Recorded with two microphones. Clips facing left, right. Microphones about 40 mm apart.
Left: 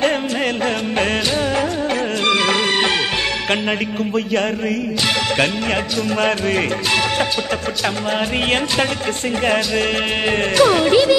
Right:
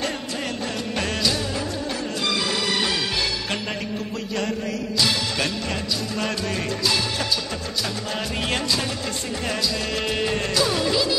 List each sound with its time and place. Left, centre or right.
2.2 s music: left
6.2 s music: left
10.5 s music: left